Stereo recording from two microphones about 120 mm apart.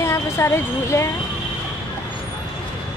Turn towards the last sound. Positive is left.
turn(degrees=25)  # may be behind; listen again after turning